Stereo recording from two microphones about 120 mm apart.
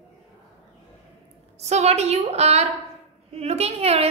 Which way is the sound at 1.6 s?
65° right (ahead or behind).